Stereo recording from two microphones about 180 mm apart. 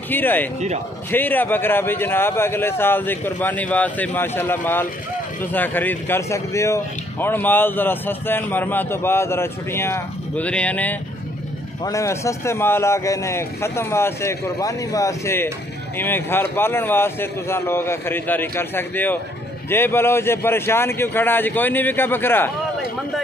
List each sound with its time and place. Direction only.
0.1 s speech: 10° left (ahead or behind)